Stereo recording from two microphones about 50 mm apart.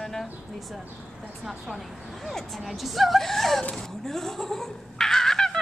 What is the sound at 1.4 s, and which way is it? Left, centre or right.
Speech, centre.